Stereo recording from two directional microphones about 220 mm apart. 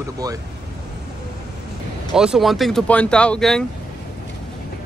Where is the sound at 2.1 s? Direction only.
5° right (ahead or behind).